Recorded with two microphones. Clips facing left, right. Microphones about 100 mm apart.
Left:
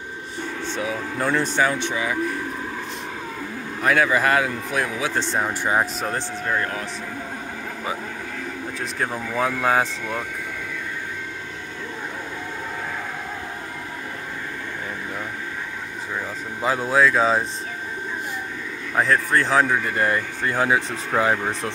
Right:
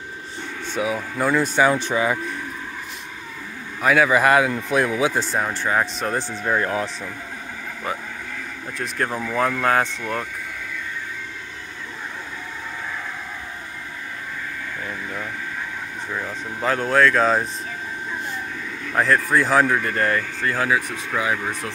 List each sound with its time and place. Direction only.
0.7 s speech: 10° right (ahead or behind)
1.8 s speech: 35° right (ahead or behind)
3.8 s speech: 5° right (ahead or behind); by 5.1 s 25° right (ahead or behind)
5.1 s speech: 5° right (ahead or behind)
5.5 s speech: 15° left (ahead or behind)
6.1 s speech: 20° right (ahead or behind)
8.7 s speech: centre (ahead or behind)
16.2 s speech: 5° left (ahead or behind)
18.9 s speech: centre (ahead or behind); by 21.5 s 35° left (ahead or behind)